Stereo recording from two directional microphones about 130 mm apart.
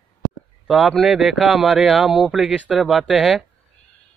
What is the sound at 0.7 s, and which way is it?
Speech, centre (ahead or behind).